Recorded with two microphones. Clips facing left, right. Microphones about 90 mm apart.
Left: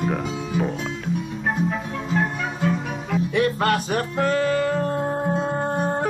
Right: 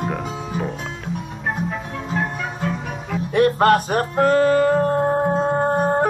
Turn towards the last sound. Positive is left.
turn(degrees=-40)  # may be behind; listen again after turning